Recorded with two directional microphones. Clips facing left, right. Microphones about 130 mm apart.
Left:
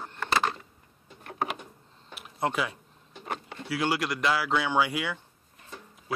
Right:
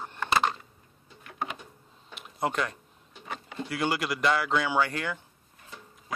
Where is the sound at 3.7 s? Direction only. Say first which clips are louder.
Left 1 dB; centre (ahead or behind).